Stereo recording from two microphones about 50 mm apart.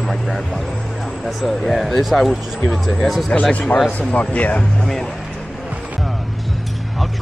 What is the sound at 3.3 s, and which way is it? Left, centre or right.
Speech, left.